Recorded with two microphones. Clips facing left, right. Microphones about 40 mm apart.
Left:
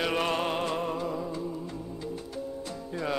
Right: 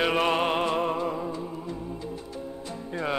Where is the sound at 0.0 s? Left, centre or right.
Centre.